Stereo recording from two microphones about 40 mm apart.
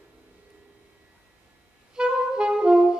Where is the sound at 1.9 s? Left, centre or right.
Right.